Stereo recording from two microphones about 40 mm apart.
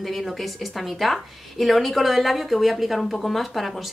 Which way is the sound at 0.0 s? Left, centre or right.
Centre.